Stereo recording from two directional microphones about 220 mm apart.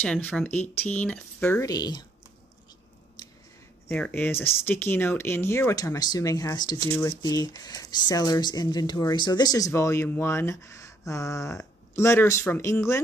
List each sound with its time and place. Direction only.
0.0 s speech: 5° left (ahead or behind)
3.2 s scissors: 20° left (ahead or behind)
3.9 s speech: 10° left (ahead or behind)